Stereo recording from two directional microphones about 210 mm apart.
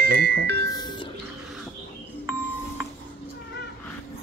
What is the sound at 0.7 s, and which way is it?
Music, 20° left (ahead or behind).